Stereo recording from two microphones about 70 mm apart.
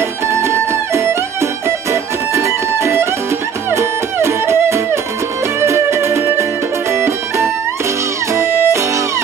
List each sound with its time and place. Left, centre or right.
0.3 s music: right